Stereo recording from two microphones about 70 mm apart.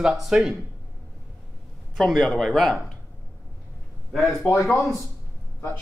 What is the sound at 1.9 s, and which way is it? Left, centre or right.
Speech, centre.